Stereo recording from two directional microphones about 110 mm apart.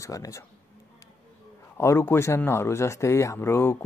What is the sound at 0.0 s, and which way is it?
Speech, 30° left (ahead or behind).